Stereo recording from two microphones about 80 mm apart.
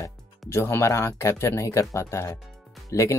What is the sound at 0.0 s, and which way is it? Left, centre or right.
Speech, left.